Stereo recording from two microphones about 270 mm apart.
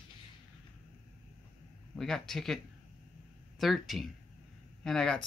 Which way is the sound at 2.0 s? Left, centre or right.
Centre.